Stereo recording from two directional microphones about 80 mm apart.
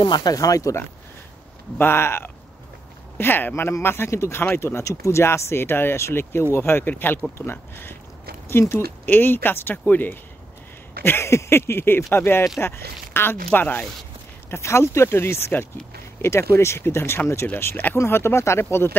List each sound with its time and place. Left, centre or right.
0.0 s speech: left
0.3 s speech: left
1.8 s speech: left
14.5 s speech: left